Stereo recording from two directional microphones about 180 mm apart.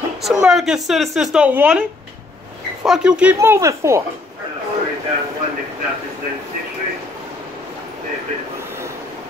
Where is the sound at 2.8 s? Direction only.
5° right (ahead or behind).